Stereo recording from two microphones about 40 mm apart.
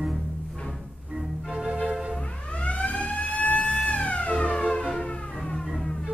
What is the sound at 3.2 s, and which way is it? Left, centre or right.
Vehicle, left.